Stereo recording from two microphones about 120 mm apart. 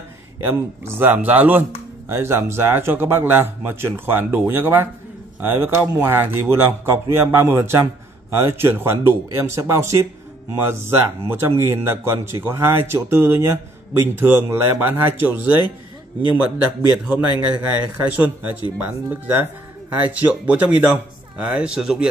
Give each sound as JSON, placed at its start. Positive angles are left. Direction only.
{"t": 0.4, "sound": "speech", "side_deg": -20}
{"t": 17.1, "sound": "speech", "side_deg": -10}